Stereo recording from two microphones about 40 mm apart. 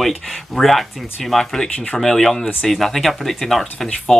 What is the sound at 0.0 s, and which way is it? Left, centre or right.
Speech, centre.